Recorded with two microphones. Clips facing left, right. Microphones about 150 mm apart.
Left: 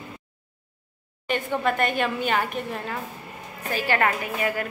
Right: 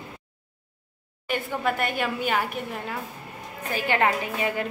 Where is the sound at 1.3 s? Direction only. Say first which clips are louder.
Left 2 dB; 10° right (ahead or behind).